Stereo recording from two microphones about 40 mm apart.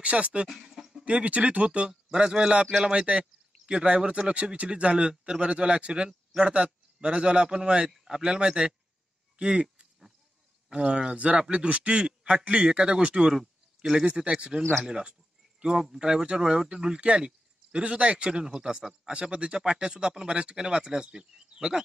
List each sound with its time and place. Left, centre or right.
0.0 s speech: right
0.5 s a sound: centre
1.0 s speech: right
1.9 s speech: centre
13.4 s a sound: centre
14.2 s speech: right
18.4 s speech: centre